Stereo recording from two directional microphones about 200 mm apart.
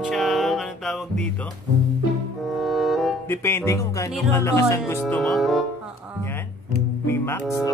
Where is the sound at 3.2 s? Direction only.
10° left (ahead or behind).